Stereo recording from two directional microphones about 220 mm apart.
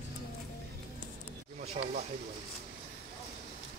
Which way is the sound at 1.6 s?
30° right (ahead or behind).